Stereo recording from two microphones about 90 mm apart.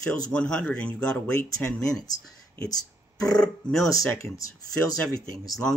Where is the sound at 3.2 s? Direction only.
10° left (ahead or behind).